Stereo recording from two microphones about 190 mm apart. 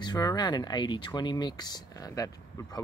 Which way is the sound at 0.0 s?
20° left (ahead or behind).